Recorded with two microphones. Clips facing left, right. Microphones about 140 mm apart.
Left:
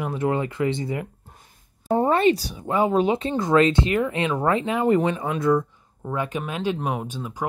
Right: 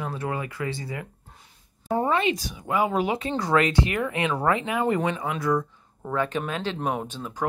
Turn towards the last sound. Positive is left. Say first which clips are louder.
# left 1 dB
turn(degrees=10)  # may be behind; listen again after turning